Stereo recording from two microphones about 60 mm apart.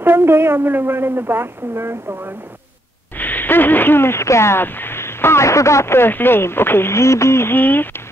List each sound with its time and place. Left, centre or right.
0.0 s speech: right
3.2 s speech: left
7.5 s speech: left